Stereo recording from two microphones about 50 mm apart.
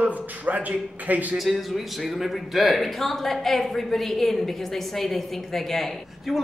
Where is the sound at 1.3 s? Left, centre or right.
Centre.